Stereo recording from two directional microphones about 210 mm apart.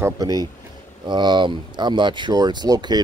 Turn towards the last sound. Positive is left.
turn(degrees=-20)  # may be behind; listen again after turning